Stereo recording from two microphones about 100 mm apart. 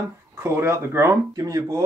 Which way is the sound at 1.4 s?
35° right (ahead or behind).